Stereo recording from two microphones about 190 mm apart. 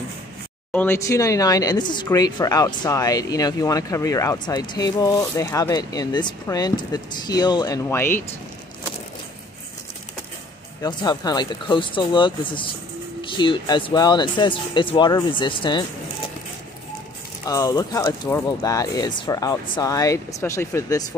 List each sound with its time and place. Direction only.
0.7 s speech: 15° left (ahead or behind)
10.8 s speech: 20° left (ahead or behind)
17.5 s speech: 20° left (ahead or behind)